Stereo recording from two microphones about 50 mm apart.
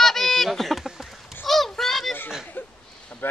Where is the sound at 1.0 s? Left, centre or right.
Centre.